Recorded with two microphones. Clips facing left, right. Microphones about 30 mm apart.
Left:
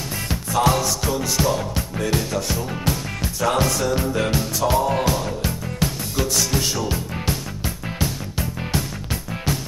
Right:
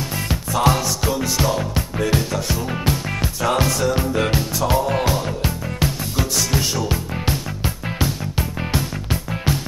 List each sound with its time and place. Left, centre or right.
0.5 s music: centre
1.0 s music: centre